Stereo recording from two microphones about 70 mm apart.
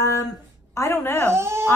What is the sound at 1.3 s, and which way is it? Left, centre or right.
Speech, right.